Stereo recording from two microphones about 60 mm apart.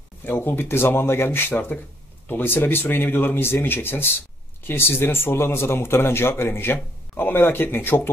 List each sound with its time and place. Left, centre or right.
0.2 s speech: left